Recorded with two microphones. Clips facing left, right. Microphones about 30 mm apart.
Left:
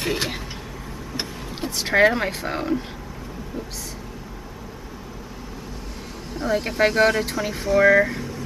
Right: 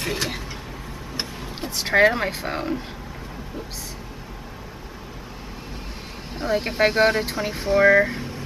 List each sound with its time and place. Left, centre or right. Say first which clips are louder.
0.0 s vehicle: left 1 dB; centre
1.1 s a sound: even; centre
6.3 s speech: even; right